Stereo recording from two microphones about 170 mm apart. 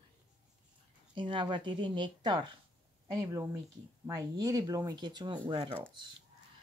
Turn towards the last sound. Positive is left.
turn(degrees=-30)  # may be behind; listen again after turning